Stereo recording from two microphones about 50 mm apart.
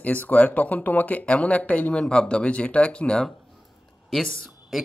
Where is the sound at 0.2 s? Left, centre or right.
Left.